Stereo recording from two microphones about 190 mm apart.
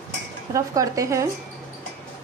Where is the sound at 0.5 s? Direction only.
15° right (ahead or behind).